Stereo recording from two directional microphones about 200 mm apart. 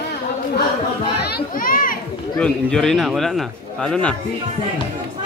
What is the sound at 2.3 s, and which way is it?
A man's voice, 5° left (ahead or behind).